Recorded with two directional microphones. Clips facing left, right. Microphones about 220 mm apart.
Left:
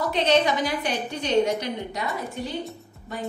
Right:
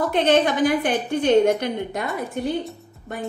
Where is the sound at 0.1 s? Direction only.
55° right (ahead or behind).